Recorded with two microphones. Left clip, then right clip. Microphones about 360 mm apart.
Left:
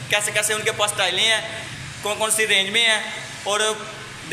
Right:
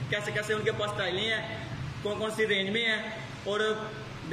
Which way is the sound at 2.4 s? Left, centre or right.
Left.